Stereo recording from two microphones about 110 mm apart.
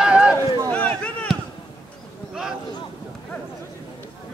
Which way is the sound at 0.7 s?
10° left (ahead or behind).